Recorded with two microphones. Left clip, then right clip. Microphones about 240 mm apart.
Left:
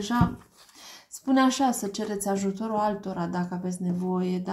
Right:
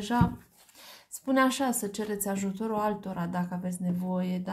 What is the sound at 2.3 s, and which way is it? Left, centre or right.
Speech, right.